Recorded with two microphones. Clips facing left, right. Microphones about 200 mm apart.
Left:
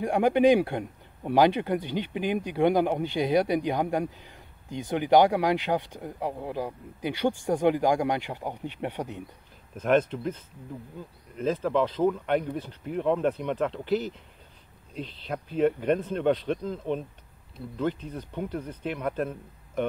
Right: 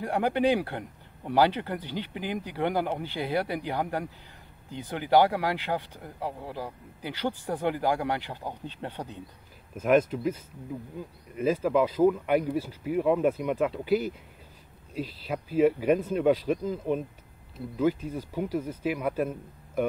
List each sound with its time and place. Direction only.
0.0 s speech: 15° left (ahead or behind)
9.8 s speech: 5° right (ahead or behind)